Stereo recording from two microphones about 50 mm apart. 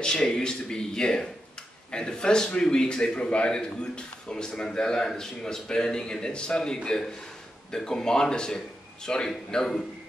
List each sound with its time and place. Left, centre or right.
0.0 s a man's voice: centre